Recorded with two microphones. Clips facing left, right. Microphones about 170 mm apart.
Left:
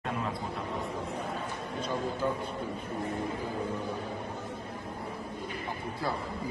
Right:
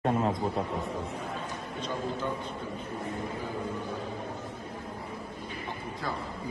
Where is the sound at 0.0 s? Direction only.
40° right (ahead or behind).